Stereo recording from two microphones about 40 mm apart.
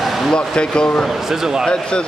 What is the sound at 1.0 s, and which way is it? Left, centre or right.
Speech, centre.